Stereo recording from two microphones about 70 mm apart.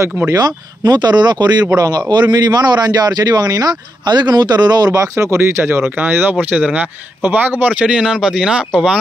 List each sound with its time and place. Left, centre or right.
0.3 s speech: right
1.7 s speech: right
4.9 s speech: right; by 8.6 s centre